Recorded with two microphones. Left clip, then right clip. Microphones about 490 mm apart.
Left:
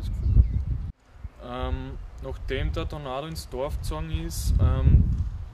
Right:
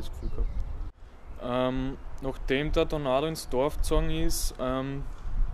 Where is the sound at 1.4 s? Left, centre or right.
Right.